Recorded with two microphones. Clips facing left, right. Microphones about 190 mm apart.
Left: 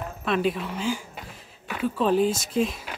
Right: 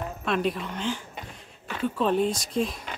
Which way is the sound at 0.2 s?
Centre (ahead or behind).